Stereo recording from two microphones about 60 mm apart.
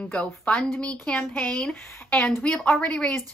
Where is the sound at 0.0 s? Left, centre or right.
Centre.